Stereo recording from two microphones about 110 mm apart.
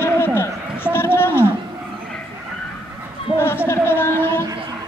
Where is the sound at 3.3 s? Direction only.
20° left (ahead or behind).